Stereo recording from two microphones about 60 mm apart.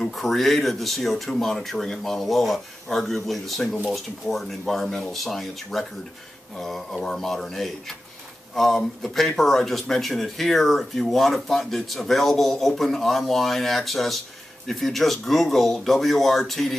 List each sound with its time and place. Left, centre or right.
0.0 s speech: centre